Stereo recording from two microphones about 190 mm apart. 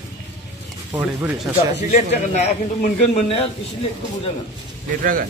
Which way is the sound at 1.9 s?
35° left (ahead or behind).